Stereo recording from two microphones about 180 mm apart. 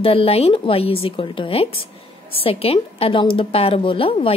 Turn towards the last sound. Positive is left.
turn(degrees=30)  # may be behind; listen again after turning